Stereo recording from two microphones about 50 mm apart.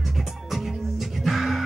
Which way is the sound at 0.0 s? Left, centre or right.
Centre.